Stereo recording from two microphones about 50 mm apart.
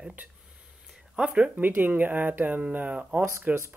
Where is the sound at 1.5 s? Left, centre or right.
Right.